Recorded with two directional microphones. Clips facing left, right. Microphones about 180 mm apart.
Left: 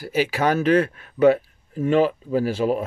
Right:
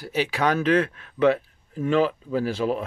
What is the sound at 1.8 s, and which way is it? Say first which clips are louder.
Speech: left 3 dB; 40° left (ahead or behind).